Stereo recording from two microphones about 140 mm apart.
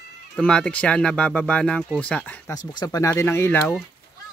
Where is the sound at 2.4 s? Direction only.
25° left (ahead or behind).